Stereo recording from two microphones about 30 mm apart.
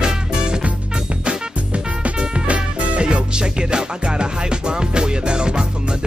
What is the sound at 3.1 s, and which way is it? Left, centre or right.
Music, right.